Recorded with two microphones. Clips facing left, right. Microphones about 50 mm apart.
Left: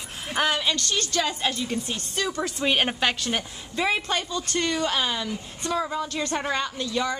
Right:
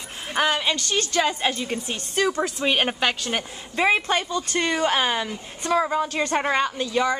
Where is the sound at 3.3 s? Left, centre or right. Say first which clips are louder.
Right 3 dB; right.